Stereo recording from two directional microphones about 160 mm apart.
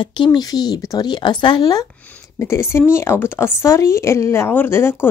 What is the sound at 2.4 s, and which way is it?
Speech, 15° left (ahead or behind).